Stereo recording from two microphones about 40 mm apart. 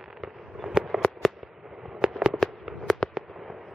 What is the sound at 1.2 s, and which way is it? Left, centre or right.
Fireworks, centre.